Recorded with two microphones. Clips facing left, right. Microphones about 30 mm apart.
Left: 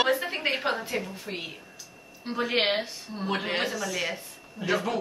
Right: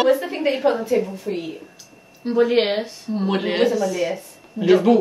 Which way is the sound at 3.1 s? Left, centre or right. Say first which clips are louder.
Right 8 dB; centre.